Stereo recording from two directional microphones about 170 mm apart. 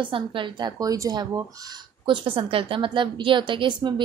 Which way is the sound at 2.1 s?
30° right (ahead or behind).